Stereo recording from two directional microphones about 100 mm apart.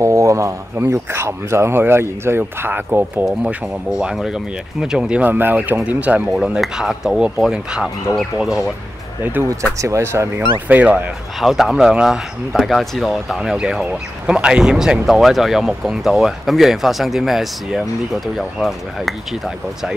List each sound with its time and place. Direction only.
0.0 s speech: 30° right (ahead or behind)
3.4 s speech: 10° right (ahead or behind)
9.2 s speech: 20° right (ahead or behind)
9.8 s speech: 30° right (ahead or behind)
10.7 s speech: 15° right (ahead or behind)
11.3 s speech: centre (ahead or behind)